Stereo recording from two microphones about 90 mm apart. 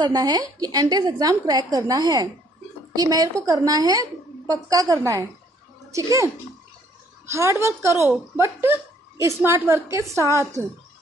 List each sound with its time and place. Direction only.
0.0 s a woman's voice: 50° right (ahead or behind); by 10.0 s 35° right (ahead or behind)